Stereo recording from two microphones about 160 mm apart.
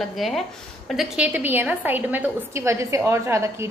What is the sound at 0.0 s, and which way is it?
A woman's voice, centre (ahead or behind).